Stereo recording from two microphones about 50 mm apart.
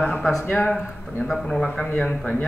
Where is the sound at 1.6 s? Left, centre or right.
Left.